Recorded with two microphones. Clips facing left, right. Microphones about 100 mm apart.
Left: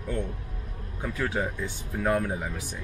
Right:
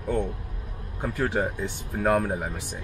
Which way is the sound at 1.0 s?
50° right (ahead or behind).